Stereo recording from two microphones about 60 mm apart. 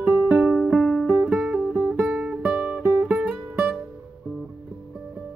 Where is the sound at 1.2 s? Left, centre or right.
Centre.